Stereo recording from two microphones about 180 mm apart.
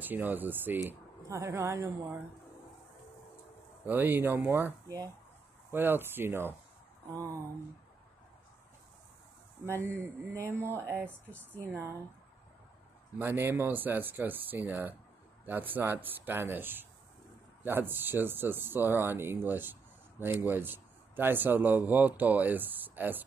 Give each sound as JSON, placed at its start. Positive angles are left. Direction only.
{"t": 0.0, "sound": "speech", "side_deg": -10}
{"t": 3.8, "sound": "speech", "side_deg": -10}
{"t": 9.9, "sound": "speech", "side_deg": -15}
{"t": 13.2, "sound": "speech", "side_deg": -10}